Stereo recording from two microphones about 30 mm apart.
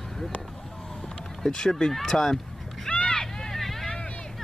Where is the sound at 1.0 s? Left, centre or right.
Centre.